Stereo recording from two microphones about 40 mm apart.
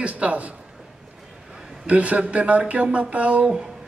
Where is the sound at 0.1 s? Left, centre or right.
Right.